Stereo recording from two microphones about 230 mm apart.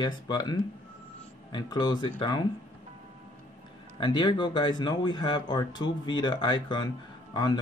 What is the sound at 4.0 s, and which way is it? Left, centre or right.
Speech, centre.